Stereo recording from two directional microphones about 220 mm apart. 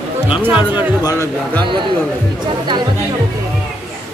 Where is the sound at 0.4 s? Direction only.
5° right (ahead or behind).